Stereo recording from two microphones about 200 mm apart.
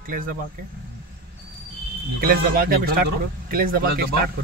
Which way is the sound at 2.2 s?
50° right (ahead or behind).